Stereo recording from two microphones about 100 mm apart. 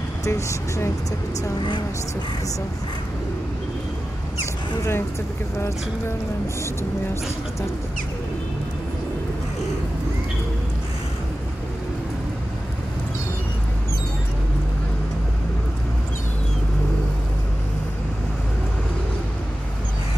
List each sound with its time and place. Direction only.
0.2 s speech: 30° left (ahead or behind)